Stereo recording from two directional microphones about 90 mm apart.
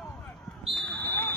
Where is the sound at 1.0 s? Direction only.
20° left (ahead or behind).